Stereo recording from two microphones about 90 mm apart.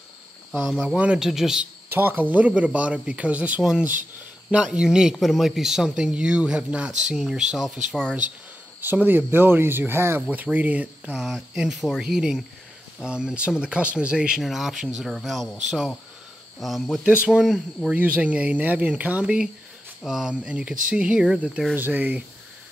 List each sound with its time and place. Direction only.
0.7 s speech: 15° right (ahead or behind)
1.9 s speech: 25° right (ahead or behind); by 8.0 s 5° right (ahead or behind)
8.8 s speech: 20° right (ahead or behind)
11.5 s speech: 5° right (ahead or behind)
16.5 s speech: centre (ahead or behind)
17.0 s speech: 10° right (ahead or behind)
17.9 s speech: 15° right (ahead or behind)
21.7 s speech: 20° right (ahead or behind)